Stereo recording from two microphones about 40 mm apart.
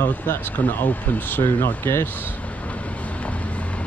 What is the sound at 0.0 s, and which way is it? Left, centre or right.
Speech, left.